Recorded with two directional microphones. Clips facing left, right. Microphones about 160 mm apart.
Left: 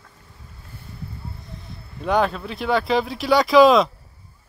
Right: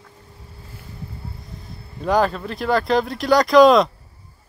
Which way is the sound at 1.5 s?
Centre (ahead or behind).